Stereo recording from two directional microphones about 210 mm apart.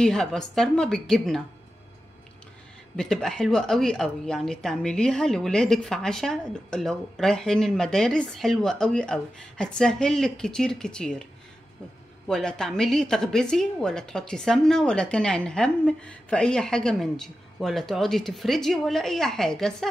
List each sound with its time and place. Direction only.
0.0 s a woman's voice: centre (ahead or behind)
3.0 s a woman's voice: centre (ahead or behind)
12.3 s a woman's voice: 5° left (ahead or behind)